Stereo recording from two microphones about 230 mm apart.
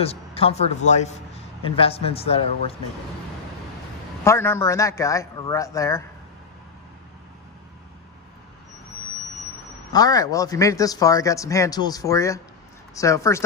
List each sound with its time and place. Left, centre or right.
0.0 s speech: left
4.2 s speech: centre
9.9 s speech: centre